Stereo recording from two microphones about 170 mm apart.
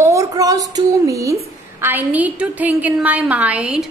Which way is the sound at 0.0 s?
20° right (ahead or behind).